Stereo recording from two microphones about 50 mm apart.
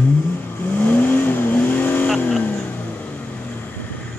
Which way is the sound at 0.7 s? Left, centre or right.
Left.